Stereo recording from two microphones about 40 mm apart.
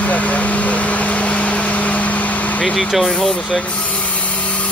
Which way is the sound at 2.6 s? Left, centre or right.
Centre.